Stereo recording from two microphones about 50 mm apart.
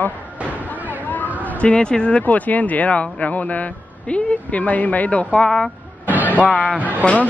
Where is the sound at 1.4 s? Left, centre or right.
Left.